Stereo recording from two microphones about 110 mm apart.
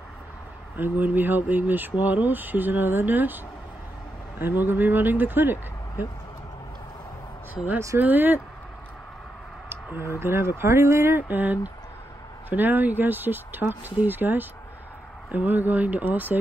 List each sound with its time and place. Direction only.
0.7 s speech: 15° right (ahead or behind)
4.4 s speech: 20° right (ahead or behind)
7.5 s speech: 15° right (ahead or behind)
10.1 s speech: 20° right (ahead or behind)